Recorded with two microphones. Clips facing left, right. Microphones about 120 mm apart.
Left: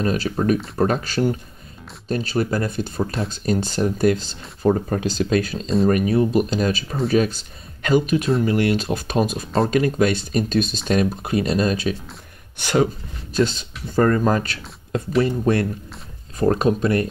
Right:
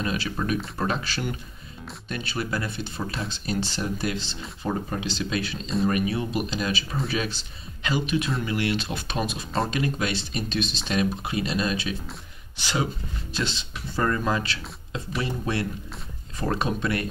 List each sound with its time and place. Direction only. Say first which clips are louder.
0.0 s speech: left 7 dB; 45° left (ahead or behind)